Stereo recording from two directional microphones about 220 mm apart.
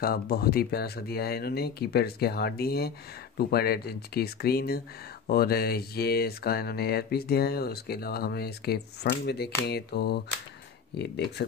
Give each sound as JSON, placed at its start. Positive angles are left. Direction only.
{"t": 0.0, "sound": "speech", "side_deg": 45}